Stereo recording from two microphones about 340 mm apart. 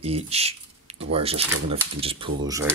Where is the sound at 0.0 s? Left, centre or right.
Centre.